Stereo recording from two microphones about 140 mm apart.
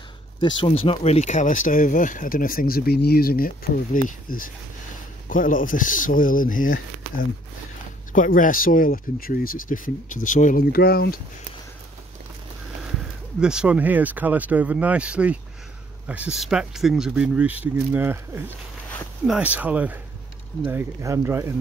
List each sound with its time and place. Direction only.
0.4 s speech: 35° left (ahead or behind); by 11.1 s 90° left
13.4 s speech: 5° right (ahead or behind)